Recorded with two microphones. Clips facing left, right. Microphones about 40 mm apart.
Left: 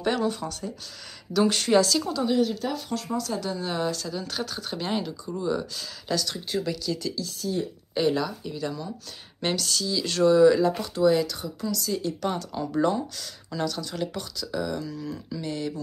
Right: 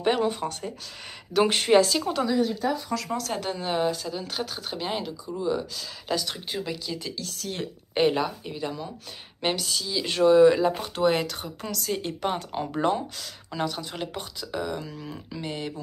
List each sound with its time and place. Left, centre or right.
0.0 s speech: right
3.1 s speech: right
3.5 s speech: right; by 5.9 s centre
6.0 s speech: right
7.2 s speech: right
7.9 s speech: right
11.0 s speech: right